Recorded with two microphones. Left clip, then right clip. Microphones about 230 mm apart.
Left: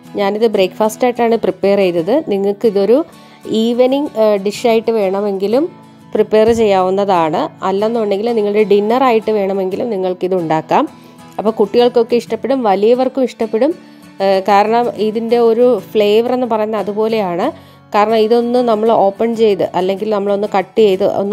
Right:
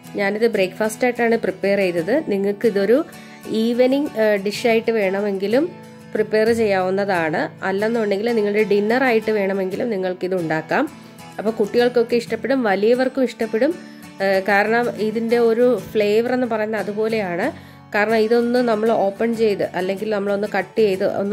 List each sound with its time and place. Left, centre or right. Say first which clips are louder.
0.1 s speech: left 5 dB; left